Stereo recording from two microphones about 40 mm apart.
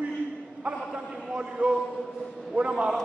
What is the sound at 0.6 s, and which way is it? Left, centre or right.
A man's voice, right.